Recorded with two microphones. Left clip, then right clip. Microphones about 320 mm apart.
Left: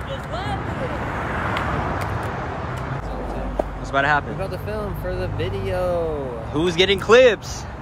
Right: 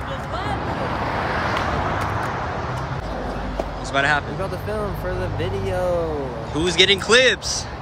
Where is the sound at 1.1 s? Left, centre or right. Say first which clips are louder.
Right 2 dB; right.